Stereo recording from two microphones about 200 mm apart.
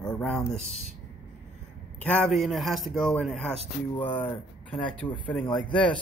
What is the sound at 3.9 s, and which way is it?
Speech, 25° left (ahead or behind).